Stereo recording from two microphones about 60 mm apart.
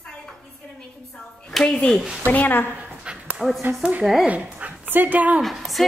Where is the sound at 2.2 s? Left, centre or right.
Left.